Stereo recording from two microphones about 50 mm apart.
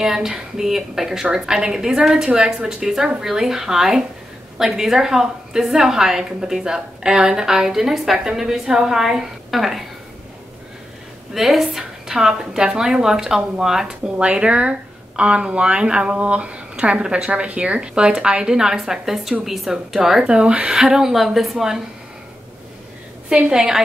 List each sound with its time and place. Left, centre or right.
0.0 s a woman's voice: centre
11.3 s a woman's voice: centre
20.2 s a woman's voice: right
23.3 s a woman's voice: centre